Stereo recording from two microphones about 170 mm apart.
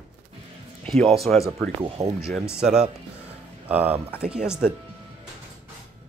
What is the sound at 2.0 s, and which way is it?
Speech, 40° right (ahead or behind).